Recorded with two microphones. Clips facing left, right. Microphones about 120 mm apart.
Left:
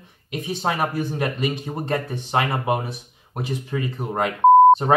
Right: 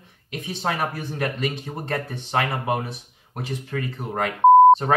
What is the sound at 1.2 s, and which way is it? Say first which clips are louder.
Speech: left 2 dB; 15° left (ahead or behind).